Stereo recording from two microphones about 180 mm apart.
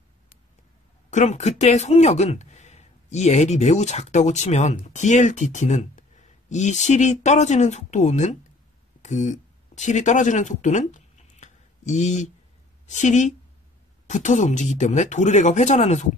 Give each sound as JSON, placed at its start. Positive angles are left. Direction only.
{"t": 1.1, "sound": "speech", "side_deg": 40}